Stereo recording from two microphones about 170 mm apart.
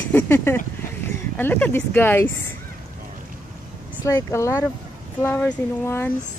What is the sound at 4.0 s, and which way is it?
Speech, 20° left (ahead or behind).